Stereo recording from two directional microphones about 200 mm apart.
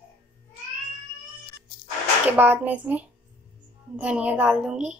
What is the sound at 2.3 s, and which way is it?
A woman's voice, 10° right (ahead or behind).